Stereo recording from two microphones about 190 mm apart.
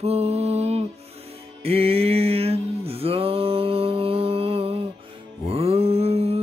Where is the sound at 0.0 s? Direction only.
35° right (ahead or behind).